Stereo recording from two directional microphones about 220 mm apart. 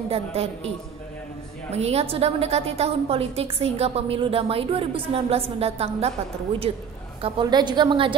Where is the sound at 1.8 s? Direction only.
30° right (ahead or behind).